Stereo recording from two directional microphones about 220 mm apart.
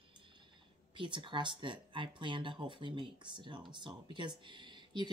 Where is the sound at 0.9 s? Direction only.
20° right (ahead or behind).